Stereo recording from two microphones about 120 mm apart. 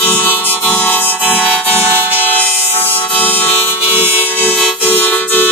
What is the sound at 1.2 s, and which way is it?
Music, 15° right (ahead or behind).